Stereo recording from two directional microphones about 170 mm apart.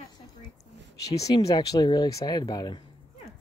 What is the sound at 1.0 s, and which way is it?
Speech, 20° left (ahead or behind).